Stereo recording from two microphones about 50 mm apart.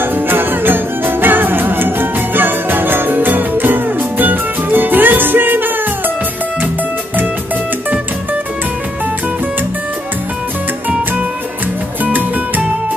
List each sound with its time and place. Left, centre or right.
0.0 s music: right
12.0 s music: right